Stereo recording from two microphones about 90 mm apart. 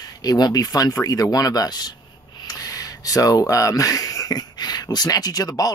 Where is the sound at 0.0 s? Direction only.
45° left (ahead or behind).